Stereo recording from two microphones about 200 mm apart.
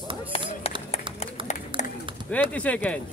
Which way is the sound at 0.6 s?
30° left (ahead or behind).